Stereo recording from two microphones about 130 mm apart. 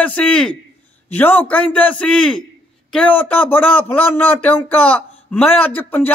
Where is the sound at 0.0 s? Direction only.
10° left (ahead or behind).